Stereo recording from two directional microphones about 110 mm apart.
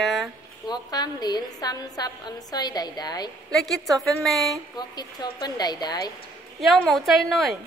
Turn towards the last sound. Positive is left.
turn(degrees=0)  # may be behind; listen again after turning